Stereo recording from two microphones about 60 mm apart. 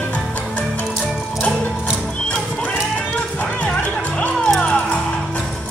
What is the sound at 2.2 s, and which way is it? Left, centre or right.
Music, centre.